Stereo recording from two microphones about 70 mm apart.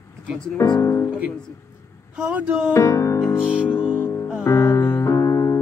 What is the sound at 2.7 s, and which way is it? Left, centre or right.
Music, left.